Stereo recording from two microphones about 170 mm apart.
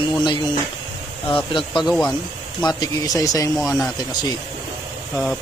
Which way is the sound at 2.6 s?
25° left (ahead or behind).